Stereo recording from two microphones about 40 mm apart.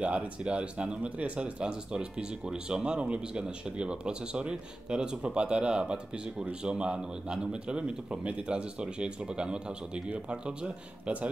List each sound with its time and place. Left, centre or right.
0.0 s a man's voice: right